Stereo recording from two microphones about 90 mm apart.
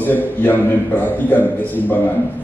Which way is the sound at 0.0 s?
20° left (ahead or behind).